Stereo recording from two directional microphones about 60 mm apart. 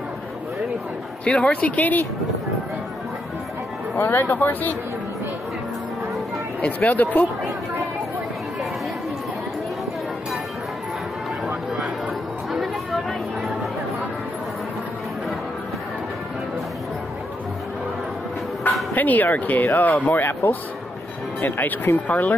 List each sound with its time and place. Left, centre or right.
1.2 s speech: centre
4.0 s speech: left
6.6 s speech: left
11.4 s a sound: centre
18.9 s speech: left